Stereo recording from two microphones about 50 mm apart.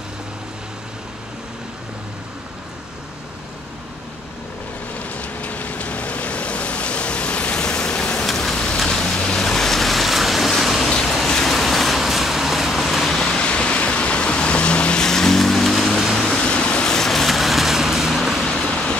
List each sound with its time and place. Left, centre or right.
4.9 s vehicle: left; by 8.3 s centre
8.3 s a sound: centre
8.8 s vehicle: centre
10.9 s a sound: centre
11.2 s vehicle: centre
13.2 s vehicle: centre
15.0 s music: centre
16.2 s a sound: centre
16.9 s vehicle: centre
18.5 s vehicle: centre